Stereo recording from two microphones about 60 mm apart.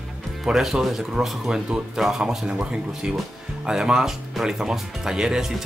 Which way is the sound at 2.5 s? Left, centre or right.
Centre.